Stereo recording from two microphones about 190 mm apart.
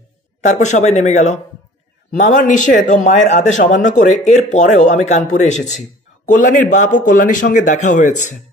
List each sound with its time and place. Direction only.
0.4 s speech: 40° left (ahead or behind)